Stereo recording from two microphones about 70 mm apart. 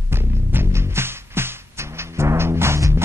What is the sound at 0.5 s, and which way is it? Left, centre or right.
Music, right.